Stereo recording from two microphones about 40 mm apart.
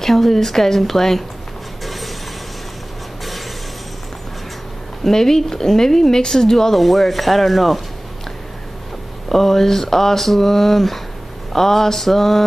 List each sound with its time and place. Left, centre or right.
0.0 s speech: centre
5.0 s speech: centre
9.3 s speech: centre